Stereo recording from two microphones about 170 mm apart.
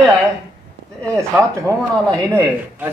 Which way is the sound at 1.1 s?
15° right (ahead or behind).